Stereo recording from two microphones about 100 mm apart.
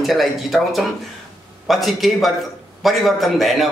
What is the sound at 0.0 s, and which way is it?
A man's voice, centre (ahead or behind).